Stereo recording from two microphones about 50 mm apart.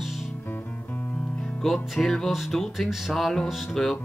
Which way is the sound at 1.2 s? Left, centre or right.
Left.